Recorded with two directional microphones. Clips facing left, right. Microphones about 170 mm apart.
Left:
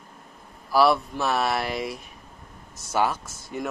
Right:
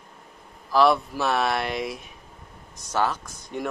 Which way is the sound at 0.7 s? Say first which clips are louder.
Even; 5° left (ahead or behind).